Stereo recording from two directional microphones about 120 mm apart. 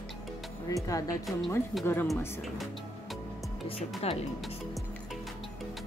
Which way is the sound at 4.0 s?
55° left (ahead or behind).